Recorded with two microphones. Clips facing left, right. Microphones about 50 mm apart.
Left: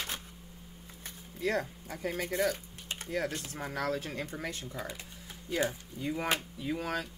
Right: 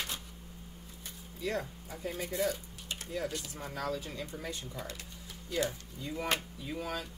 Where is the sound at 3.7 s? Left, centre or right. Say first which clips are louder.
Left 3 dB; left.